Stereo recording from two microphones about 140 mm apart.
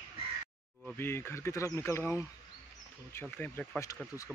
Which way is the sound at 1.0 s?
15° left (ahead or behind).